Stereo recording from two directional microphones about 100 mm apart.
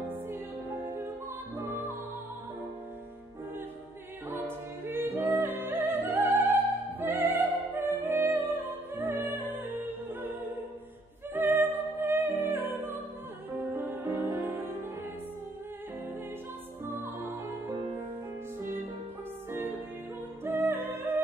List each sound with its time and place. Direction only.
1.6 s music: 20° right (ahead or behind)
4.3 s music: 20° right (ahead or behind)
11.3 s music: 20° right (ahead or behind)
17.0 s music: 25° right (ahead or behind)
20.4 s music: 20° right (ahead or behind)